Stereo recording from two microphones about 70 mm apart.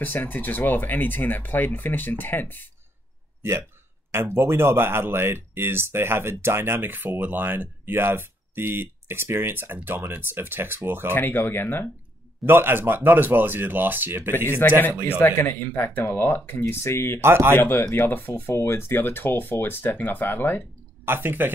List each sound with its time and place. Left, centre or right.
0.0 s speech: left
4.1 s speech: right
11.1 s speech: left
12.4 s speech: right
14.6 s speech: left
17.2 s speech: right
17.6 s speech: left
21.0 s speech: right